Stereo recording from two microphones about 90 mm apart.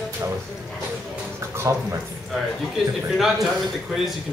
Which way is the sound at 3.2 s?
5° right (ahead or behind).